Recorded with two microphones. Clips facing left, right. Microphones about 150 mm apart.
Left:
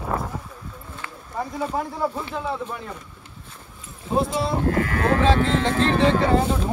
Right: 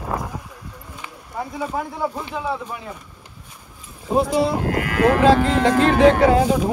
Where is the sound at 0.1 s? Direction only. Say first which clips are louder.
Even; 15° right (ahead or behind).